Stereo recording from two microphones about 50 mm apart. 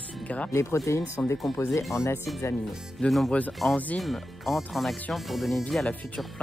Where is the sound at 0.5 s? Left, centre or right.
Left.